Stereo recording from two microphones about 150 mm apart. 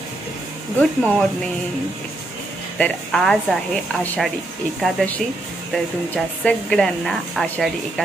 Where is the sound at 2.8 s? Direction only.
Centre (ahead or behind).